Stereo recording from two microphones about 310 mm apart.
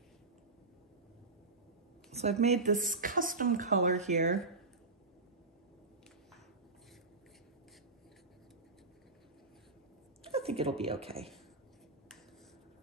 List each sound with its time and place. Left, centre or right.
2.1 s speech: right
10.2 s a sound: centre
10.8 s speech: centre